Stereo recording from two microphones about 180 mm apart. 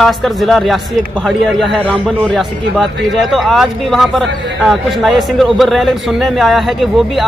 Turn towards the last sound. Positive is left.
turn(degrees=0)  # may be behind; listen again after turning